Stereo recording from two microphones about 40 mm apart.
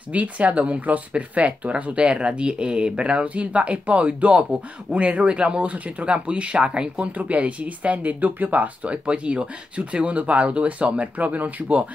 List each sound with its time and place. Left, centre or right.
0.1 s speech: right
8.9 s speech: right